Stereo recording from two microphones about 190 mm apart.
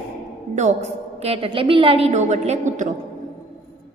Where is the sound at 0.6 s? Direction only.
40° right (ahead or behind).